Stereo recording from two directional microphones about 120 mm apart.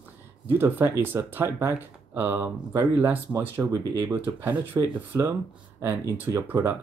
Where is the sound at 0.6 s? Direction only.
20° right (ahead or behind).